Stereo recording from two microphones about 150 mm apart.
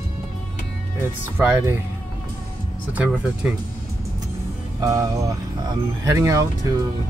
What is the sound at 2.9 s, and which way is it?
Speech, 10° right (ahead or behind).